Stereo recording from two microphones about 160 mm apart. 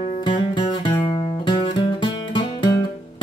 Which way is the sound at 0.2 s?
30° left (ahead or behind).